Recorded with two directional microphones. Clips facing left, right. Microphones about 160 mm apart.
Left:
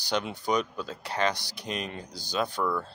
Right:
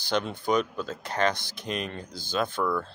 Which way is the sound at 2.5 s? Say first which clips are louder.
Right 2 dB; 10° left (ahead or behind).